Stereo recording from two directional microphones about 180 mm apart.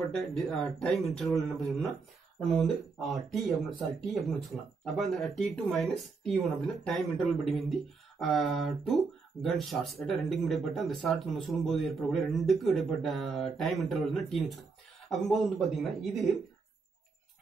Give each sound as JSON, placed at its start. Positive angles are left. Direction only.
{"t": 0.1, "sound": "speech", "side_deg": 5}